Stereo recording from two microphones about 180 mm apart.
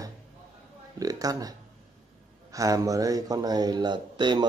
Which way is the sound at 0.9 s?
20° right (ahead or behind).